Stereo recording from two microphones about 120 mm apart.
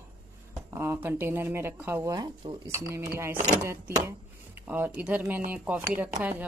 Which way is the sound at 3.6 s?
25° right (ahead or behind).